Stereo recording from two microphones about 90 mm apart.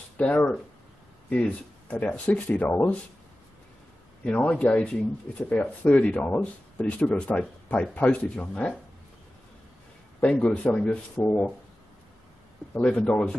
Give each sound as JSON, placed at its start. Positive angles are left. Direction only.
{"t": 0.2, "sound": "speech", "side_deg": 15}
{"t": 4.2, "sound": "speech", "side_deg": 15}
{"t": 10.2, "sound": "speech", "side_deg": 15}
{"t": 12.7, "sound": "speech", "side_deg": 10}